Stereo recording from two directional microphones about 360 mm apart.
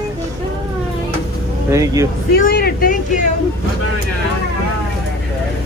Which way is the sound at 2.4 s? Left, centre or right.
Left.